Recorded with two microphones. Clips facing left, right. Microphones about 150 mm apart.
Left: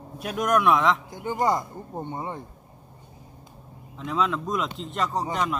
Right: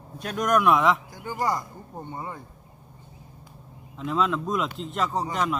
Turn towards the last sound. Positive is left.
turn(degrees=0)  # may be behind; listen again after turning